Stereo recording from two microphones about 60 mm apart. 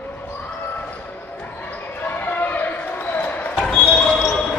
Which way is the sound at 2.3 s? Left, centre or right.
Left.